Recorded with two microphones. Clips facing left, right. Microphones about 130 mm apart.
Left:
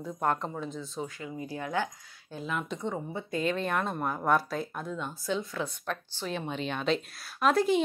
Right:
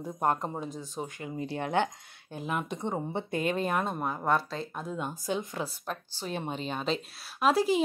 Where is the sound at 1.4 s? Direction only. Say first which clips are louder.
Right 4 dB; 65° right (ahead or behind).